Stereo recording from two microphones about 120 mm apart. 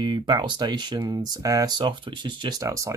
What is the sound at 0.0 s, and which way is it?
Speech, 40° right (ahead or behind).